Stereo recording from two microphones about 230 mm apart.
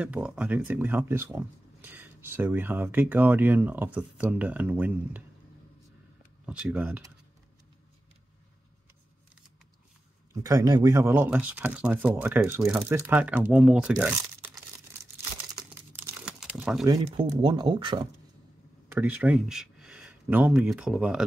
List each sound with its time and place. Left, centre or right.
0.0 s speech: centre
6.4 s speech: centre
10.3 s speech: centre
16.0 s crumpling: centre
16.8 s speech: centre
18.9 s speech: centre